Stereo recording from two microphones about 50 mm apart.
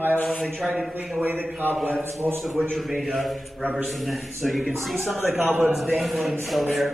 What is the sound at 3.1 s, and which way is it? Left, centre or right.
A man's voice, centre.